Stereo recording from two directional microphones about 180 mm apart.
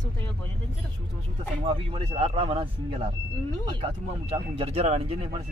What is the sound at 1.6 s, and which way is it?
Speech, 30° right (ahead or behind).